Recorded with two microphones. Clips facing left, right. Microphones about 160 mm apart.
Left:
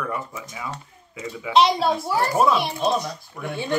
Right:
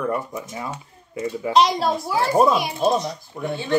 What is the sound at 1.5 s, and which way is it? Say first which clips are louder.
Speech: left 1 dB; centre (ahead or behind).